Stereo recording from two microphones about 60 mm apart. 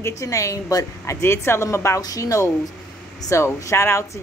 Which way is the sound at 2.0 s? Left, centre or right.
Left.